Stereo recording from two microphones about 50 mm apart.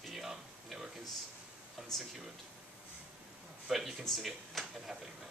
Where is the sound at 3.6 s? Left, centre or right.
Centre.